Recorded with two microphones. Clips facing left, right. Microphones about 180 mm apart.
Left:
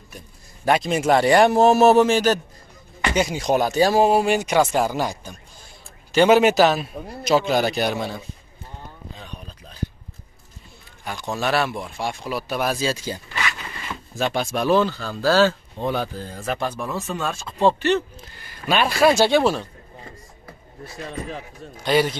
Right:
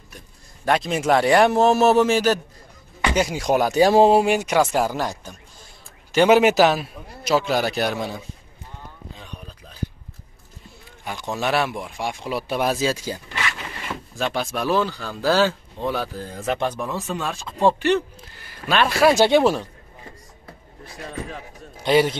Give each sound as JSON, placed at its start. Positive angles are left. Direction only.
{"t": 0.7, "sound": "a man's voice", "side_deg": 0}
{"t": 4.4, "sound": "a man's voice", "side_deg": -5}
{"t": 6.1, "sound": "speech", "side_deg": -10}
{"t": 11.3, "sound": "speech", "side_deg": -15}
{"t": 14.1, "sound": "speech", "side_deg": 0}
{"t": 15.8, "sound": "a man's voice", "side_deg": -5}
{"t": 16.4, "sound": "speech", "side_deg": -20}
{"t": 16.8, "sound": "a man's voice", "side_deg": 0}
{"t": 17.7, "sound": "speech", "side_deg": -15}
{"t": 18.7, "sound": "a man's voice", "side_deg": 0}
{"t": 19.1, "sound": "speech", "side_deg": -20}
{"t": 21.8, "sound": "speech", "side_deg": -20}